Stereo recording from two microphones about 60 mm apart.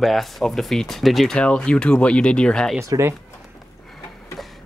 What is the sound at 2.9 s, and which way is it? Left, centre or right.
Speech, right.